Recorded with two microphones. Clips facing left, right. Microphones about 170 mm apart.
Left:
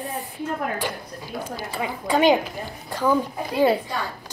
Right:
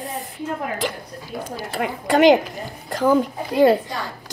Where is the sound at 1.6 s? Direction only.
75° right (ahead or behind).